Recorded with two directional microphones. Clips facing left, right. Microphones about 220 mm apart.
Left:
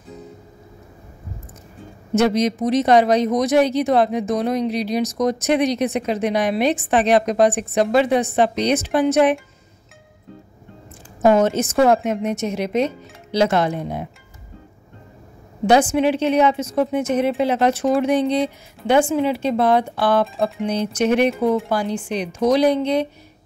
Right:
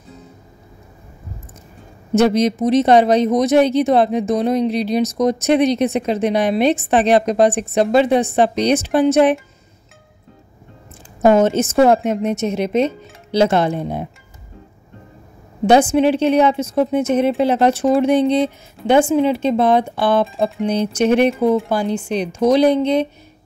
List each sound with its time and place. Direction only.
2.1 s speech: 30° right (ahead or behind)
11.2 s speech: 25° right (ahead or behind)
15.6 s speech: 25° right (ahead or behind)